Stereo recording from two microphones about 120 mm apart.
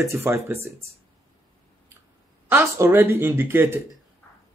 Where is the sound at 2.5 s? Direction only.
20° right (ahead or behind).